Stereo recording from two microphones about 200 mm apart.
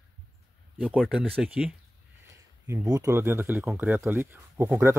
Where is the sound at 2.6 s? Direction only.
15° right (ahead or behind).